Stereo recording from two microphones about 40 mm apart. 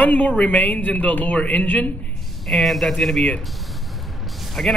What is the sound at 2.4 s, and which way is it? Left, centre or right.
Speech, centre.